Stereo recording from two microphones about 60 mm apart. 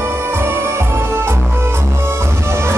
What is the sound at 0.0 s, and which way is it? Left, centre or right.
Music, right.